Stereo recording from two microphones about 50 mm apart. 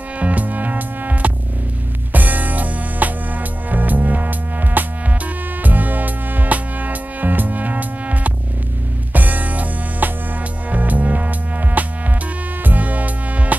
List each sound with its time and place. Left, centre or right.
0.2 s music: right